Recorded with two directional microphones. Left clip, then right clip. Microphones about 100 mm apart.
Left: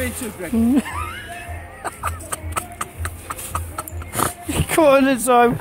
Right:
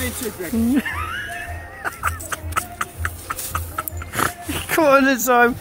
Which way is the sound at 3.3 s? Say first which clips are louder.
Right 1 dB; 20° left (ahead or behind).